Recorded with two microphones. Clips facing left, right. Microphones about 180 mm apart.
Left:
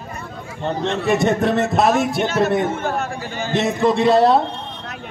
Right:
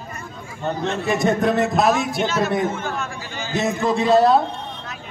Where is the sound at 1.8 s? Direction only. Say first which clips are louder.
Left 2 dB; 55° left (ahead or behind).